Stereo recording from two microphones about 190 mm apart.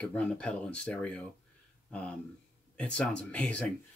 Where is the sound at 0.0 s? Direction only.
5° left (ahead or behind).